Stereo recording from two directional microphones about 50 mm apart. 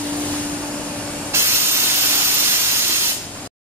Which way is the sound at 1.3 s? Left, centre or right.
Right.